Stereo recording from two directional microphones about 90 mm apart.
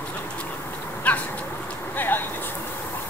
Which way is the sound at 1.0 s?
15° left (ahead or behind).